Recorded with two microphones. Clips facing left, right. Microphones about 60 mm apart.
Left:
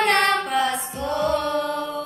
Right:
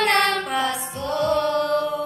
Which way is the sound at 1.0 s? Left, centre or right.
Centre.